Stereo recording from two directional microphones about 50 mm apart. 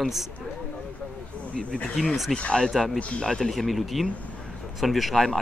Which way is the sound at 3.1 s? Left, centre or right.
Centre.